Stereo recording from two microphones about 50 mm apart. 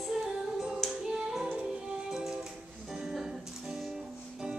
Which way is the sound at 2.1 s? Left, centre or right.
Centre.